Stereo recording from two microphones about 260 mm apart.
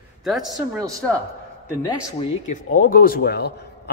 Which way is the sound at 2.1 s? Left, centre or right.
Left.